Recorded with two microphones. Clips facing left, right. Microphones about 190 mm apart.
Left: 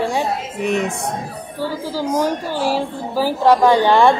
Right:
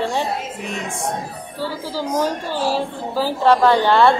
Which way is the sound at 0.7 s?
65° left (ahead or behind).